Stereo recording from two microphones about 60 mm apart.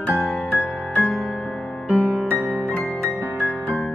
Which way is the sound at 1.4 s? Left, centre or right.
Left.